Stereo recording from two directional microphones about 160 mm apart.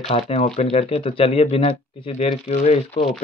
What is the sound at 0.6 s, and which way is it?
Speech, 40° left (ahead or behind).